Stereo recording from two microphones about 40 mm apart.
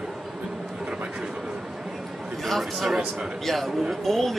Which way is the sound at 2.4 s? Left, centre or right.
Centre.